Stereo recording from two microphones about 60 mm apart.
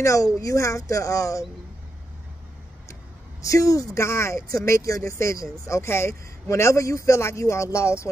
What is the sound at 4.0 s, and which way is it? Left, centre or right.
A man's voice, left.